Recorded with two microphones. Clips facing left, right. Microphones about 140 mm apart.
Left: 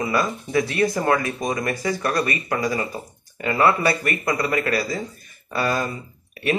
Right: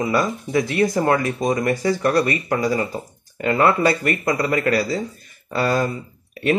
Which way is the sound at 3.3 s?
10° left (ahead or behind).